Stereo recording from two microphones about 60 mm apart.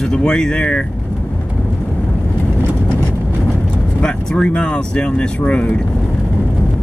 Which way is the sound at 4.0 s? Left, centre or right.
Centre.